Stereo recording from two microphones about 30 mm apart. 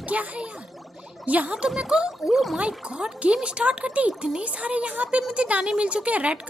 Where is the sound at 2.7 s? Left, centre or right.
Right.